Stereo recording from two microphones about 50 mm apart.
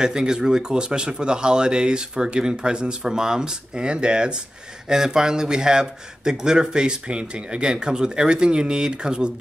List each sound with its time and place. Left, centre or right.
0.0 s speech: centre